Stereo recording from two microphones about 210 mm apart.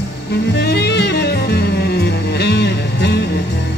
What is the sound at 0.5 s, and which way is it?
Music, 50° left (ahead or behind).